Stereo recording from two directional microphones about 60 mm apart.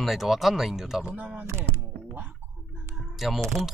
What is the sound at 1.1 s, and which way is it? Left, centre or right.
Speech, right.